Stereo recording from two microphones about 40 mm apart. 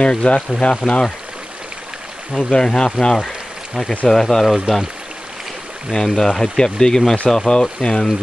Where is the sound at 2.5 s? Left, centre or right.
Centre.